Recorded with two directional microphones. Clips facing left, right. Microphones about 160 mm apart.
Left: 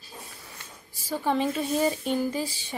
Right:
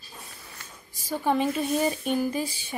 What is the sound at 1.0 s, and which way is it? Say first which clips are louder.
Speech: right 1 dB; 15° right (ahead or behind).